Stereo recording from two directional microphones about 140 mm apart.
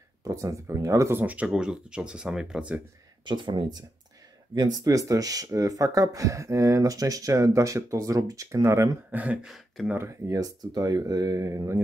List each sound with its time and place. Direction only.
0.2 s speech: 20° right (ahead or behind); by 2.8 s 5° right (ahead or behind)
3.3 s speech: 35° right (ahead or behind)
9.1 s speech: 10° right (ahead or behind)
9.9 s speech: 20° right (ahead or behind)